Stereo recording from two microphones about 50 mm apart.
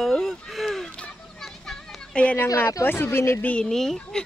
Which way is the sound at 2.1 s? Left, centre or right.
Left.